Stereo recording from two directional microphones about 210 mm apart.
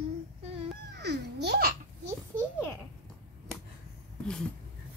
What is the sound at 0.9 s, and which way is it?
Babbling, 50° right (ahead or behind).